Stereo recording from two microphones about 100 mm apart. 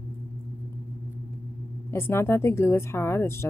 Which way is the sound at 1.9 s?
25° left (ahead or behind).